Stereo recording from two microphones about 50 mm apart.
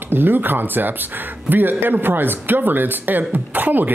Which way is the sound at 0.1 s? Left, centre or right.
Right.